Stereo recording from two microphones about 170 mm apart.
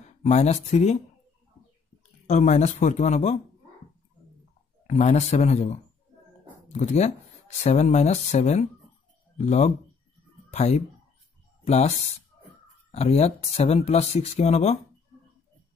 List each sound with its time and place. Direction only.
0.2 s speech: 40° left (ahead or behind)
2.2 s speech: 40° left (ahead or behind)
4.8 s speech: 45° left (ahead or behind)